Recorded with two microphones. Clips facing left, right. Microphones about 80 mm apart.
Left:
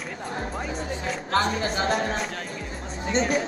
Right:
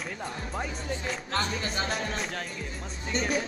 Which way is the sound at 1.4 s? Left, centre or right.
Left.